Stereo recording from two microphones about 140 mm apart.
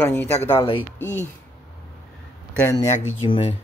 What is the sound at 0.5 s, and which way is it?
Speech, 40° left (ahead or behind).